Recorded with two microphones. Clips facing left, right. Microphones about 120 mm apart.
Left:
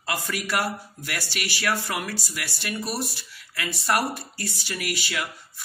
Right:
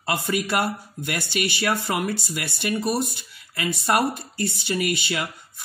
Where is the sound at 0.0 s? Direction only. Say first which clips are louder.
Right 5 dB; 20° right (ahead or behind).